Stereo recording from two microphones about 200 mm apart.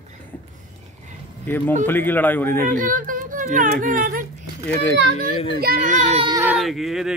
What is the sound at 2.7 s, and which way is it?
Speech, 40° right (ahead or behind).